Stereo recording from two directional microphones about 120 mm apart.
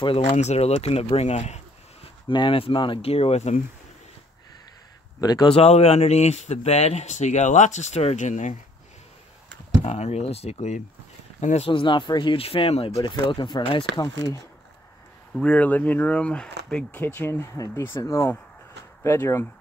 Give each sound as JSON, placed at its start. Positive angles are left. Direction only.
{"t": 0.2, "sound": "speech", "side_deg": 70}
{"t": 2.2, "sound": "speech", "side_deg": 45}
{"t": 5.2, "sound": "speech", "side_deg": 35}
{"t": 5.5, "sound": "speech", "side_deg": 60}
{"t": 9.8, "sound": "speech", "side_deg": 60}
{"t": 11.7, "sound": "speech", "side_deg": 40}
{"t": 13.0, "sound": "speech", "side_deg": 40}
{"t": 15.3, "sound": "speech", "side_deg": 10}